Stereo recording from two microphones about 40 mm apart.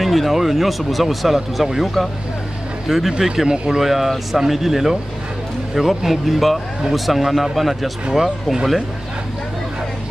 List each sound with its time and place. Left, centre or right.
0.0 s speech: centre
2.9 s speech: centre
3.8 s speech: centre